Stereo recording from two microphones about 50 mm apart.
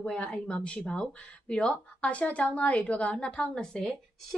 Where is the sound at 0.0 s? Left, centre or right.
Centre.